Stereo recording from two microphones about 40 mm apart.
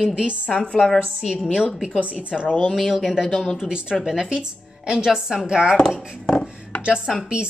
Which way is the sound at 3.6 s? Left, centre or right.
Right.